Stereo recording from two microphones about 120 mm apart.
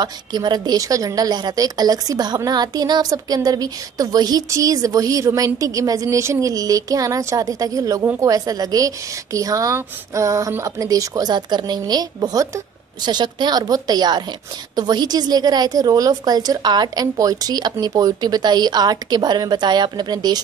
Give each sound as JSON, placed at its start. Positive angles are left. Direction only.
{"t": 0.0, "sound": "a woman's voice", "side_deg": -35}